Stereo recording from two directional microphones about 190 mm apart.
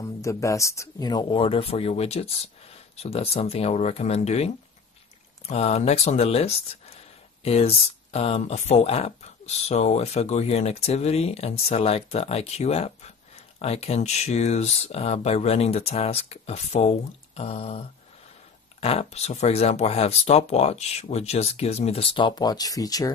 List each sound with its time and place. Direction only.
0.0 s speech: 15° left (ahead or behind); by 4.5 s 35° left (ahead or behind)
5.5 s speech: 35° left (ahead or behind); by 23.1 s 20° left (ahead or behind)